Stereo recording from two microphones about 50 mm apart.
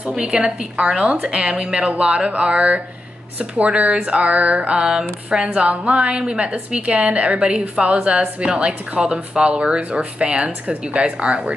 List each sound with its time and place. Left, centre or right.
0.1 s a woman's voice: centre